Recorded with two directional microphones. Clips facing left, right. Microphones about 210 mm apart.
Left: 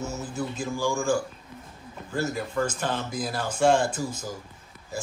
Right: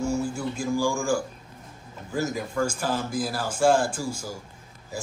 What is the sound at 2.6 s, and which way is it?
Speech, 10° right (ahead or behind).